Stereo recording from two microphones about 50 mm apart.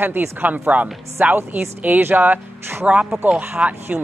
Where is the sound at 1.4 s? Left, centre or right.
Right.